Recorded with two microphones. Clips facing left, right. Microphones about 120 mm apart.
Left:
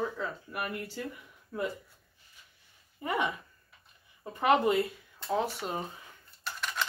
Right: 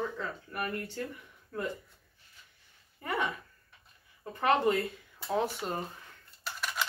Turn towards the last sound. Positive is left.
turn(degrees=-5)  # may be behind; listen again after turning